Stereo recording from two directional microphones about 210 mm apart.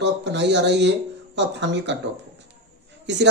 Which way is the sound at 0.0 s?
55° right (ahead or behind).